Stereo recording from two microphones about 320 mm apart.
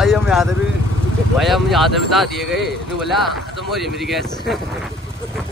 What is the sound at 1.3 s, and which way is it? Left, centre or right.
Speech, centre.